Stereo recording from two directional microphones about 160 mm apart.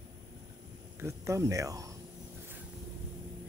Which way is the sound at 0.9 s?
15° right (ahead or behind).